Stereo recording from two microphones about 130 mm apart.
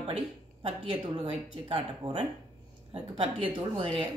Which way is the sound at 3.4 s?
40° right (ahead or behind).